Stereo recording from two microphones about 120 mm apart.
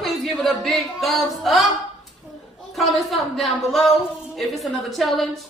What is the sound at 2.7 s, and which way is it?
Speech, centre (ahead or behind).